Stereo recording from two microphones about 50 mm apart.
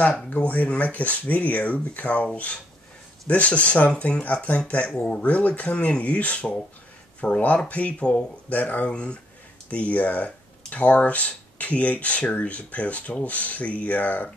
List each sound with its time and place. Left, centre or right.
0.3 s speech: left
3.3 s speech: left